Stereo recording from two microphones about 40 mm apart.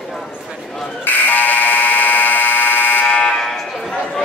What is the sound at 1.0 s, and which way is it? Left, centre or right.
Alarm, left.